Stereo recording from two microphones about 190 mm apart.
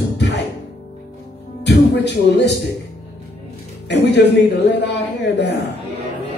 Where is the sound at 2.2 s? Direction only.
65° left (ahead or behind).